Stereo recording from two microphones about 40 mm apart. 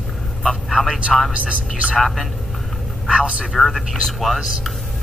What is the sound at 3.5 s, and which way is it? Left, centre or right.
Speech, centre.